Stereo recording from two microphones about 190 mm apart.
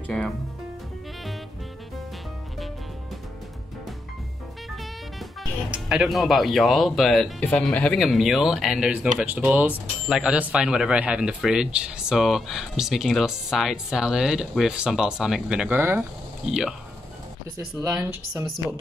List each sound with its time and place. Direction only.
5.9 s speech: 5° right (ahead or behind)
17.8 s speech: 15° right (ahead or behind)